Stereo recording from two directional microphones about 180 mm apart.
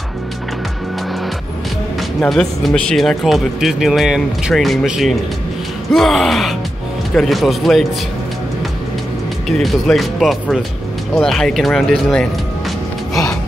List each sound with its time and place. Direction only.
2.1 s speech: 5° left (ahead or behind)
9.5 s speech: centre (ahead or behind)